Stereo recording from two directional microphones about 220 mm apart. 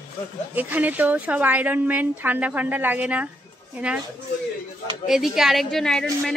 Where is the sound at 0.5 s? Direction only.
10° right (ahead or behind).